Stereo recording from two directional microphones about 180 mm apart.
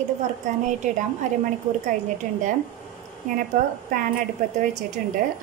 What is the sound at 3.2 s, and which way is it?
Speech, 40° right (ahead or behind).